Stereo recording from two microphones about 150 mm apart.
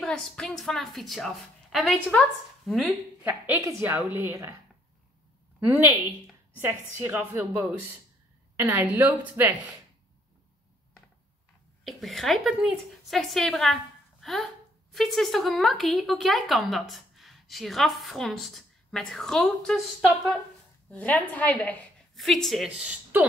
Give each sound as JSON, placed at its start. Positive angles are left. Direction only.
{"t": 0.0, "sound": "a woman's voice", "side_deg": 5}
{"t": 3.3, "sound": "a woman's voice", "side_deg": -15}
{"t": 5.7, "sound": "a woman's voice", "side_deg": -15}
{"t": 11.8, "sound": "a woman's voice", "side_deg": 0}